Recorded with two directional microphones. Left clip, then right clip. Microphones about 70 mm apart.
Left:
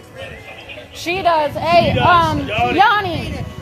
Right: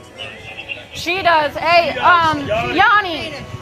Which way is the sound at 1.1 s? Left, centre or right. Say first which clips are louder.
Right 1 dB; left.